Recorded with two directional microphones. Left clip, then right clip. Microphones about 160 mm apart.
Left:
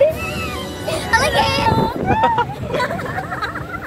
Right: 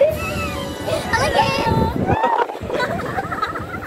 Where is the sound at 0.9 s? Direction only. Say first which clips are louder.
Left 2 dB; 25° left (ahead or behind).